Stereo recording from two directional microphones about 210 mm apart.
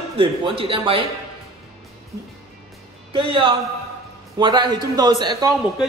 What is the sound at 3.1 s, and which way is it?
Speech, 25° right (ahead or behind).